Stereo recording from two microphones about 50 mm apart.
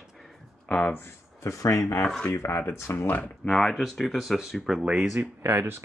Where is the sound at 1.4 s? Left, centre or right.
Left.